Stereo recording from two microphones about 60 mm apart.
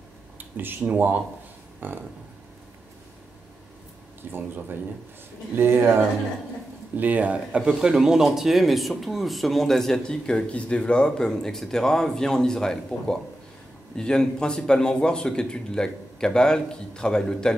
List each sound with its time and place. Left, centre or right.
0.4 s speech: right
4.2 s speech: right
7.0 s speech: right; by 17.6 s centre